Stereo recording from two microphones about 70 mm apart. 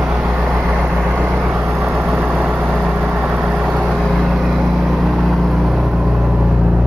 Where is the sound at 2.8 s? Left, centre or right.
Centre.